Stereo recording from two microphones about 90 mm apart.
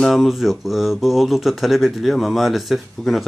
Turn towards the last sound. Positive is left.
turn(degrees=0)  # may be behind; listen again after turning